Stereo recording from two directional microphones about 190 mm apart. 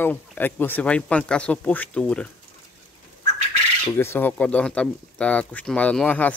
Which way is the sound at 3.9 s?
10° left (ahead or behind).